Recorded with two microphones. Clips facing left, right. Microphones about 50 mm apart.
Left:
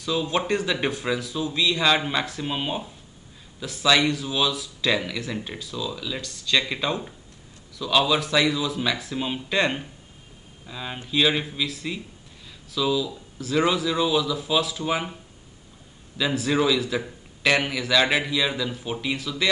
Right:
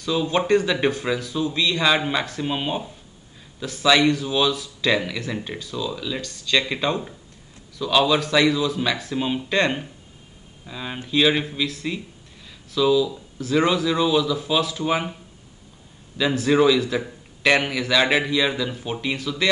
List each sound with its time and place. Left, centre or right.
0.0 s speech: centre
8.1 s speech: centre
16.2 s speech: centre